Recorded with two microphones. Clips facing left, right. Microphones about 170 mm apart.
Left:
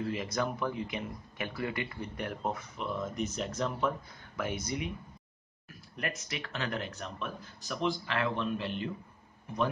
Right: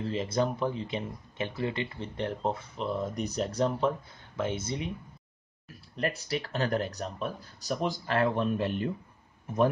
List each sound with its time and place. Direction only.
0.1 s speech: 30° right (ahead or behind)
5.9 s speech: 35° right (ahead or behind)